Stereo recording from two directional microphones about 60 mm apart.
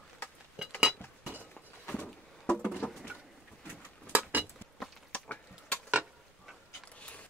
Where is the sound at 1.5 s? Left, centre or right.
Left.